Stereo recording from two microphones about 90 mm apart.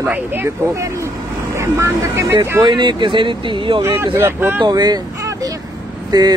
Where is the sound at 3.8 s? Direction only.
30° right (ahead or behind).